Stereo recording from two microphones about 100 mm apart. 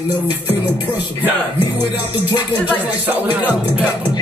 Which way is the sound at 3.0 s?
20° right (ahead or behind).